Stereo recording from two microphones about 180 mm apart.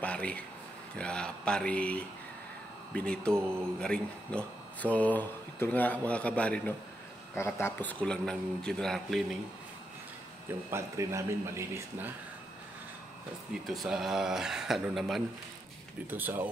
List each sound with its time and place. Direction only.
0.0 s a sound: 5° left (ahead or behind)
0.9 s a man's voice: 5° left (ahead or behind)
3.3 s speech: 15° right (ahead or behind)
3.8 s a man's voice: 5° left (ahead or behind)
10.7 s speech: 15° right (ahead or behind)
13.7 s a man's voice: centre (ahead or behind)